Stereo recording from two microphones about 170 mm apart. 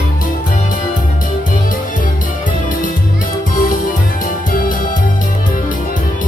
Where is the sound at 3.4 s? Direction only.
55° left (ahead or behind).